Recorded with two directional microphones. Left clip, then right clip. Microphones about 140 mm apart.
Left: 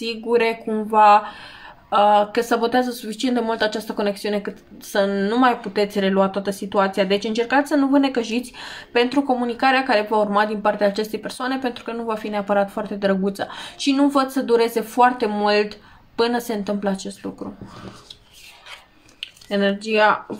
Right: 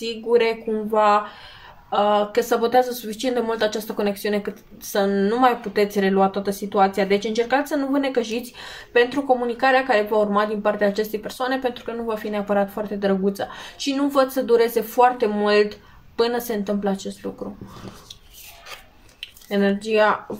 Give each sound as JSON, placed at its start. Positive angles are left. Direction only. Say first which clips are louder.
{"t": 0.0, "sound": "speech", "louder": "even", "side_deg": 45}
{"t": 19.1, "sound": "speech", "louder": "left 1 dB", "side_deg": 30}